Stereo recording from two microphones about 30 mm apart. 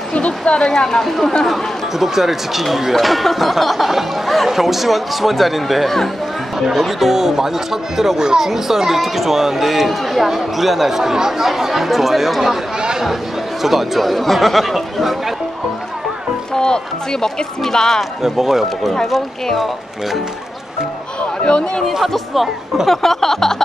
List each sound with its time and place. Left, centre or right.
0.1 s a woman's voice: left
0.6 s speech: left
1.0 s speech: centre
1.5 s speech: centre
16.5 s speech: left
18.2 s speech: centre
21.5 s speech: left
22.0 s speech: centre
22.8 s a sound: centre